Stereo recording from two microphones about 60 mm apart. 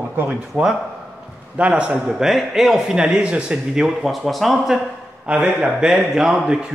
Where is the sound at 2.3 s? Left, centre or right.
Centre.